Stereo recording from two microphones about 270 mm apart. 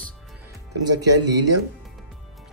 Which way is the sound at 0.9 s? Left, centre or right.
Right.